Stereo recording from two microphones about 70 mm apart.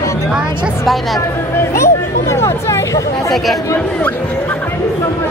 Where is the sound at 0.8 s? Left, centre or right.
Centre.